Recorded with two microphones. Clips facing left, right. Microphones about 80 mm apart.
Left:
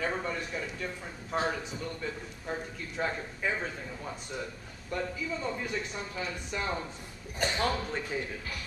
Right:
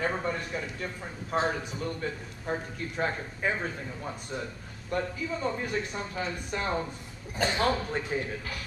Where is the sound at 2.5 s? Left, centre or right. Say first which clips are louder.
Right 4 dB; right.